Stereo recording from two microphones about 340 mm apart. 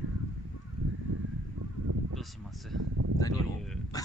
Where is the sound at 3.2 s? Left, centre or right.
Centre.